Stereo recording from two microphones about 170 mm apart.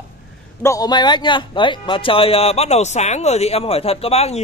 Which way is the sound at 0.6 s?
20° left (ahead or behind).